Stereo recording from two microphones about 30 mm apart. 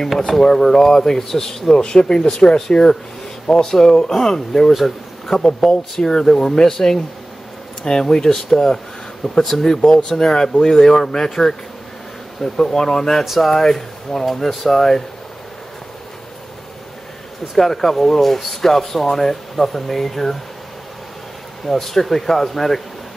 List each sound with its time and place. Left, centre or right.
0.4 s speech: centre
1.7 s a man's voice: left
9.4 s speech: centre
10.0 s speech: centre
12.4 s speech: centre
12.7 s speech: centre
17.6 s speech: centre
21.6 s speech: centre